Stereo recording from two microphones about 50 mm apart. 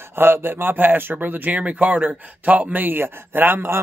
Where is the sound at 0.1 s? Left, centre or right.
Right.